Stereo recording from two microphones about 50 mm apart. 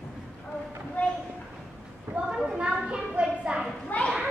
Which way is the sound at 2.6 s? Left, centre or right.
Right.